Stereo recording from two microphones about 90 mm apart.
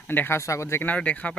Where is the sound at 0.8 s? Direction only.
15° left (ahead or behind).